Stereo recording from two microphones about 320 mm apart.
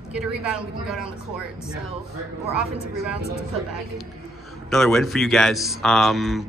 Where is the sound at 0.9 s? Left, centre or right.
Centre.